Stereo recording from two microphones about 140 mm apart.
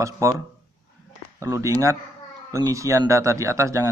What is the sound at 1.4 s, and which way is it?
Speech, 20° right (ahead or behind).